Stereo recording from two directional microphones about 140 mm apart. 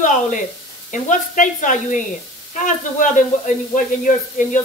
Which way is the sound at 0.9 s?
65° left (ahead or behind).